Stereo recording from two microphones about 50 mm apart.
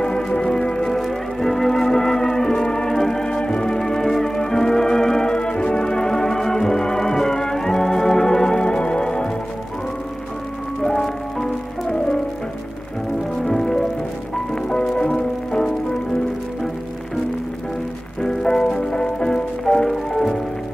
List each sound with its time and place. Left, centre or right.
0.0 s music: centre
0.9 s music: centre
10.8 s music: centre
13.4 s music: centre
18.2 s music: centre